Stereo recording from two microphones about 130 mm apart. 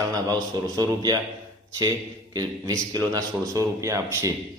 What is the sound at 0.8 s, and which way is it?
Speech, 30° right (ahead or behind).